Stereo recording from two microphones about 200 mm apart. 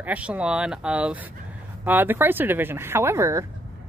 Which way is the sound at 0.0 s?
5° right (ahead or behind).